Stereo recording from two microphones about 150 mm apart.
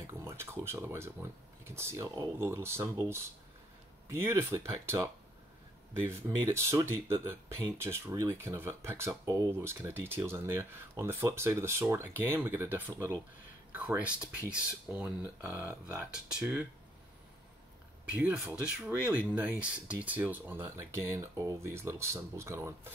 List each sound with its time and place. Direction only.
0.0 s speech: 15° right (ahead or behind)
18.1 s speech: 10° right (ahead or behind)